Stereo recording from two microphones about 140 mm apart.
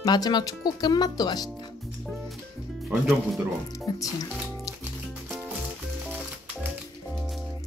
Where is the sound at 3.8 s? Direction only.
25° left (ahead or behind).